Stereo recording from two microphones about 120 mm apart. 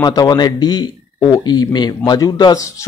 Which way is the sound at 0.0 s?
35° left (ahead or behind).